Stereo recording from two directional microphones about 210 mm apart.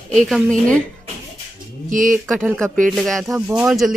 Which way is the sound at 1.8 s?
40° right (ahead or behind).